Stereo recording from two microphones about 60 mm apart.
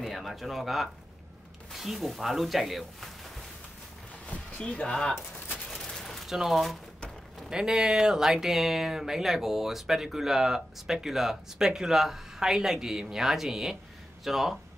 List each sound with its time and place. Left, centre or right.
0.0 s speech: centre
4.3 s speech: left
5.7 s fusillade: centre
6.2 s speech: centre